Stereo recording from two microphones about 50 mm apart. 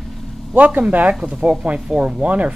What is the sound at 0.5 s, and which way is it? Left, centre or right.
Speech, right.